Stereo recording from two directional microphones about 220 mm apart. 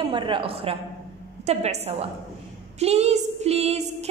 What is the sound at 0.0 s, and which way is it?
Music, 20° right (ahead or behind).